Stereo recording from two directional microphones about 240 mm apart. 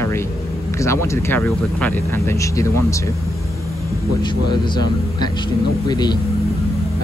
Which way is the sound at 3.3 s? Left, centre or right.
Centre.